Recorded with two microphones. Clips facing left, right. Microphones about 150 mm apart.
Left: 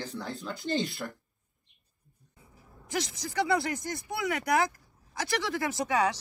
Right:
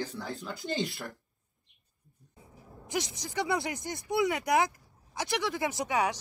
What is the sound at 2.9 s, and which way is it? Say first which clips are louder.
Speech: left 1 dB; 15° right (ahead or behind).